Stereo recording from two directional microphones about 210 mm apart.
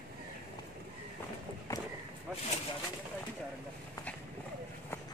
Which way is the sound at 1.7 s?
15° left (ahead or behind).